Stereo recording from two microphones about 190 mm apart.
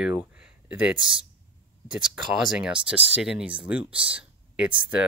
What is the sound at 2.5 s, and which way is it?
Speech, 5° right (ahead or behind).